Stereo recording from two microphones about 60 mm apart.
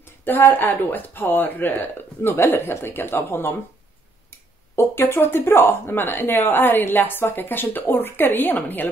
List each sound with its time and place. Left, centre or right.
0.0 s speech: left